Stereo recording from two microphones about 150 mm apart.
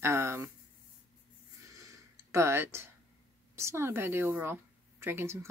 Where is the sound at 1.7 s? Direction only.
20° right (ahead or behind).